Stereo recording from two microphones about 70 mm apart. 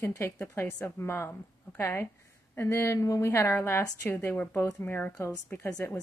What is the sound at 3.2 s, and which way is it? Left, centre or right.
A woman's voice, left.